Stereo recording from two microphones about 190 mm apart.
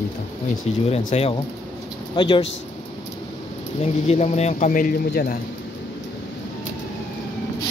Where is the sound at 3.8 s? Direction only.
35° left (ahead or behind).